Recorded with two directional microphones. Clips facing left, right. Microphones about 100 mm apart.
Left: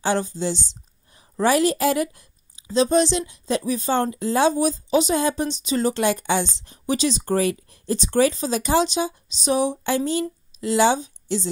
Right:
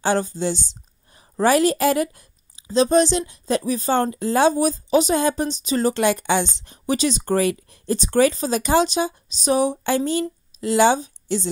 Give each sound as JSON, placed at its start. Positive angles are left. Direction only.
{"t": 0.0, "sound": "a woman's voice", "side_deg": -45}
{"t": 5.9, "sound": "a woman's voice", "side_deg": -70}
{"t": 7.9, "sound": "a woman's voice", "side_deg": -50}